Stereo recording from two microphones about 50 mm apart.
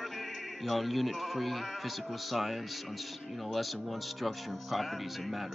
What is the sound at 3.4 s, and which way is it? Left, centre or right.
Speech, centre.